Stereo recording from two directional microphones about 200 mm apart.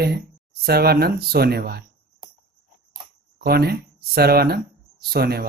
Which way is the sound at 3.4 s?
50° right (ahead or behind).